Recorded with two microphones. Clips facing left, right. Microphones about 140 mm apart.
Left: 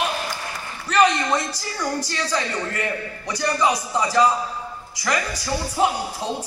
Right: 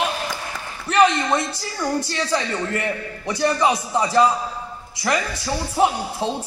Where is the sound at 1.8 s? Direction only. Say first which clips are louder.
Right 3 dB; 25° right (ahead or behind).